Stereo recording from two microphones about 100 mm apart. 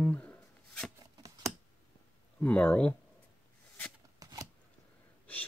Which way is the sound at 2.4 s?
15° left (ahead or behind).